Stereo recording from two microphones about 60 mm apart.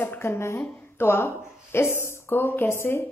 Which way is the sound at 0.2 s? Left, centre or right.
Left.